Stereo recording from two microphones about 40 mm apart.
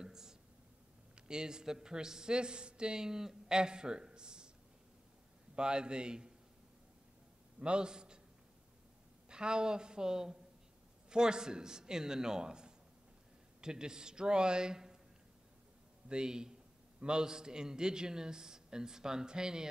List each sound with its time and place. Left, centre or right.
0.0 s whispering: centre
1.2 s a man's voice: centre
5.6 s a man's voice: right
7.6 s a man's voice: right
9.3 s a man's voice: right
16.1 s a man's voice: centre